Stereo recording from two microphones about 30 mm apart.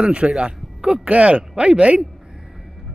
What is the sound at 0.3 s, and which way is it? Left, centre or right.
Speech, right.